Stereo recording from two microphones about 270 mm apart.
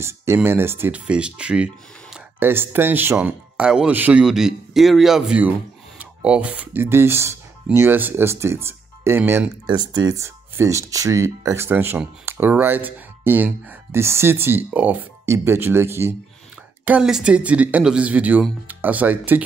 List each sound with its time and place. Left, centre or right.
0.0 s speech: centre